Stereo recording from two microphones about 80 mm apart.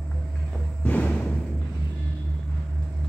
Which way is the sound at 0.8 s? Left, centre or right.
Centre.